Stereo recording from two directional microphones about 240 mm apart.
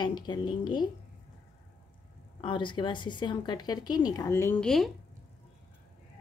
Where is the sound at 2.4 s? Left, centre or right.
Centre.